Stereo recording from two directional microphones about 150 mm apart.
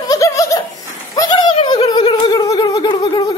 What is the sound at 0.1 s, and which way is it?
Laughter, 20° left (ahead or behind).